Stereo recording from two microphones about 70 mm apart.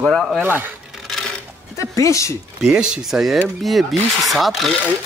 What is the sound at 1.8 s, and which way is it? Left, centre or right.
Speech, left.